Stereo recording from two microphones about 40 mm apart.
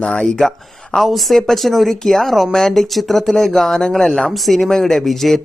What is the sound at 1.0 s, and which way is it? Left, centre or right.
A man's voice, centre.